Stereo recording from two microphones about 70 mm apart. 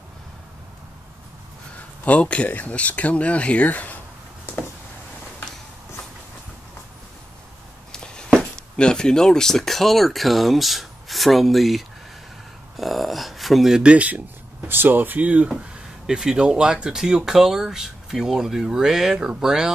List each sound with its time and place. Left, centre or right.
2.0 s speech: centre
7.9 s speech: centre
12.7 s a sound: centre
14.7 s speech: right
16.1 s speech: centre